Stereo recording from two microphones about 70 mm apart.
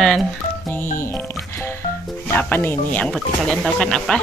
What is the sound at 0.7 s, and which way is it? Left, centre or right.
Speech, left.